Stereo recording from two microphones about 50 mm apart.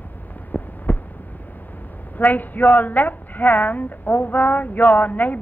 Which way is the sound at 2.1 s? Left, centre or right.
Left.